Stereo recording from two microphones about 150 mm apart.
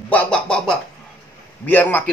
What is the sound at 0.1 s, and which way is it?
A man's voice, 10° left (ahead or behind).